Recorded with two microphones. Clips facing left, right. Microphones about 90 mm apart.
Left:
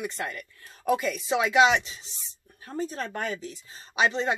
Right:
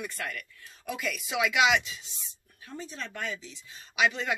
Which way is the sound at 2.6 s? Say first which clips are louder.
Left 8 dB; 45° left (ahead or behind).